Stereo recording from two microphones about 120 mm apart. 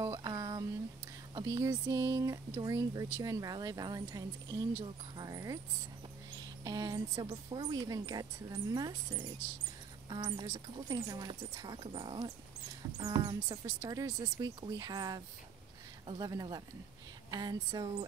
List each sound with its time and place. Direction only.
0.0 s a sound: 30° right (ahead or behind)
1.3 s a woman's voice: 30° right (ahead or behind)
6.6 s a woman's voice: 30° right (ahead or behind)